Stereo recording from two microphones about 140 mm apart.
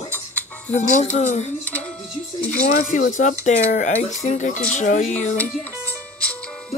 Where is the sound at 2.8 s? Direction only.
75° left (ahead or behind); by 5.3 s 55° left (ahead or behind).